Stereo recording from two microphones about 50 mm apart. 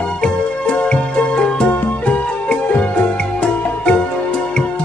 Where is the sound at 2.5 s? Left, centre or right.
Left.